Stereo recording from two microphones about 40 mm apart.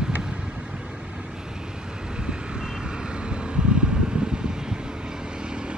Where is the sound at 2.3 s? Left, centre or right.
Right.